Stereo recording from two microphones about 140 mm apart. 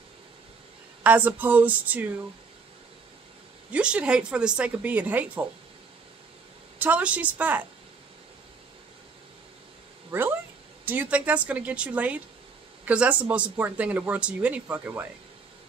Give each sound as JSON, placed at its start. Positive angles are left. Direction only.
{"t": 1.0, "sound": "speech", "side_deg": -10}
{"t": 3.7, "sound": "speech", "side_deg": -5}
{"t": 6.8, "sound": "speech", "side_deg": -10}
{"t": 10.1, "sound": "speech", "side_deg": -15}